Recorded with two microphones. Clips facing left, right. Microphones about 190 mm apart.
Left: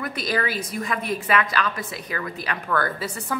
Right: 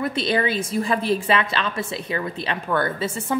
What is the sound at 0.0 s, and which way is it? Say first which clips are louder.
A woman's voice: right 4 dB; 25° right (ahead or behind).